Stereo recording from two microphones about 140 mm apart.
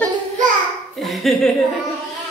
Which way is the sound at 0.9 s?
Centre (ahead or behind).